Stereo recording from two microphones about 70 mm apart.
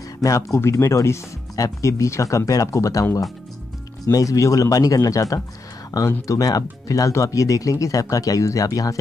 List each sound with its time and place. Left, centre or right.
0.2 s speech: left
4.1 s speech: left